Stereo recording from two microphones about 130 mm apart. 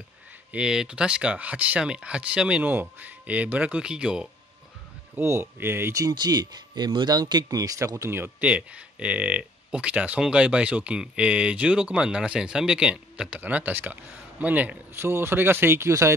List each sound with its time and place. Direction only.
0.5 s speech: 5° right (ahead or behind)
5.1 s speech: 20° right (ahead or behind)